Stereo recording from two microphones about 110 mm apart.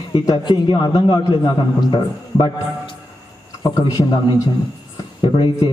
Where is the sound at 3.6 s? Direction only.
35° left (ahead or behind).